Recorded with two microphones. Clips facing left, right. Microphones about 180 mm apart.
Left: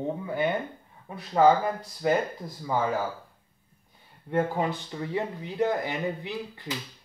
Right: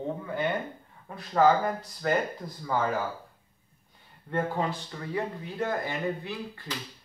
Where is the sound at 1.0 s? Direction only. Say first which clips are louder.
Left 2 dB; 10° left (ahead or behind).